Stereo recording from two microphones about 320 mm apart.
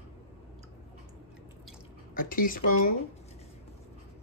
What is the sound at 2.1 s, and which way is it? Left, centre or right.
Speech, left.